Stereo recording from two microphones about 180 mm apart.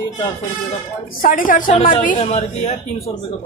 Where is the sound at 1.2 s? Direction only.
50° left (ahead or behind).